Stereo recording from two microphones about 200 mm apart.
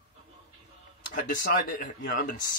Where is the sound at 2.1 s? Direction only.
45° left (ahead or behind).